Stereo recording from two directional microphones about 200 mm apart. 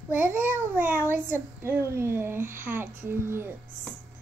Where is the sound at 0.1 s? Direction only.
10° right (ahead or behind).